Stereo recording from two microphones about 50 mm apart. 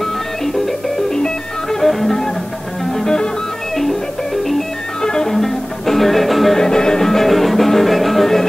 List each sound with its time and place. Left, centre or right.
0.0 s music: centre